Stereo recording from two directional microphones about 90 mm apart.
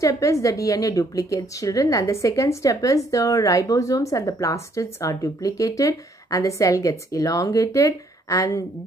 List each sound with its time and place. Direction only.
0.0 s a woman's voice: 35° left (ahead or behind)